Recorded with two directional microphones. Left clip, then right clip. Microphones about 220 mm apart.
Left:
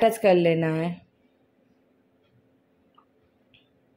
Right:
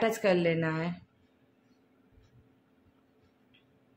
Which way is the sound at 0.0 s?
25° left (ahead or behind).